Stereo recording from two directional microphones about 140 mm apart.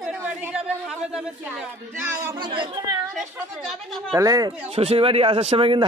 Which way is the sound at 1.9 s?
20° right (ahead or behind).